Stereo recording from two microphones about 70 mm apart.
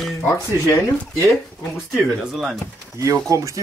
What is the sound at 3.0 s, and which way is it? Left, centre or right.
Speech, right.